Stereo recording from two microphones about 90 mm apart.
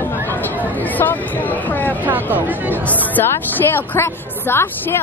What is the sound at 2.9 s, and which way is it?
A woman's voice, 20° left (ahead or behind).